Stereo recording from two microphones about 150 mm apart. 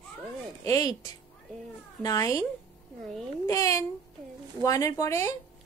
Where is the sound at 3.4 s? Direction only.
20° left (ahead or behind).